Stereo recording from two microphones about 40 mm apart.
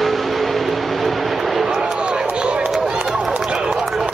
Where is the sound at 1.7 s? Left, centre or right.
Centre.